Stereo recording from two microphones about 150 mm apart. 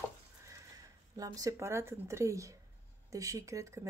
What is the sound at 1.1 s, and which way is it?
Speech, 25° right (ahead or behind).